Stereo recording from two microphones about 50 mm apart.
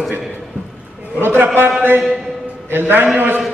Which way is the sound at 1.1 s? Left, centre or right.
Right.